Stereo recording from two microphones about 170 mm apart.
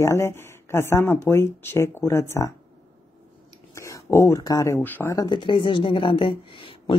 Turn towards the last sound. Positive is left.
turn(degrees=30)  # may be behind; listen again after turning